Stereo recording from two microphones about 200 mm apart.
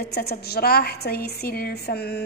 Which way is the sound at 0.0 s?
55° left (ahead or behind).